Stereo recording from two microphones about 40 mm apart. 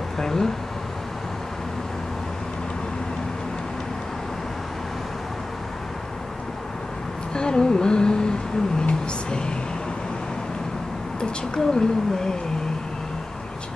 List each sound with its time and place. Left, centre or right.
0.2 s speech: centre
7.3 s a sound: centre
11.1 s a woman's voice: centre